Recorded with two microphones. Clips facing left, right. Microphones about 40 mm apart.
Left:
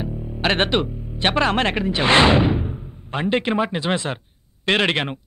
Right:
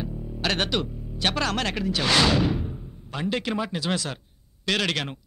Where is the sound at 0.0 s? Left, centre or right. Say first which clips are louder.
Left 5 dB; left.